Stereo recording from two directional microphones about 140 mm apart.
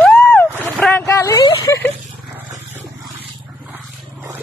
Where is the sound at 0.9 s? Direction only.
20° left (ahead or behind).